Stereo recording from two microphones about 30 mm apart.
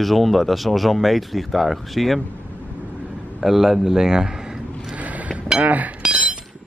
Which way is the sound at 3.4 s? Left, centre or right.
Centre.